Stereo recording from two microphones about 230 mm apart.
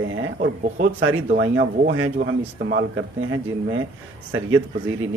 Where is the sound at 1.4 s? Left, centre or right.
Right.